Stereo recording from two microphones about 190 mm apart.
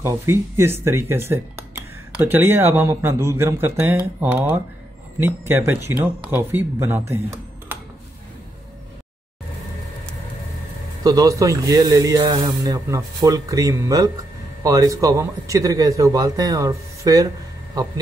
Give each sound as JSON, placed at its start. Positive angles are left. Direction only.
{"t": 0.0, "sound": "a man's voice", "side_deg": -15}
{"t": 11.1, "sound": "a man's voice", "side_deg": -20}